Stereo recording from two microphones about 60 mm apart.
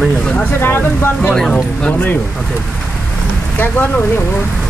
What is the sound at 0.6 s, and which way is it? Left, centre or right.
Speech, left.